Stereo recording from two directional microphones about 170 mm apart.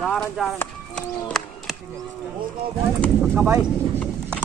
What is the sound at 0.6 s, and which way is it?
Run, 5° left (ahead or behind).